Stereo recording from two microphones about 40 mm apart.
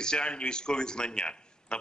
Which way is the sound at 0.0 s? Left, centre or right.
Left.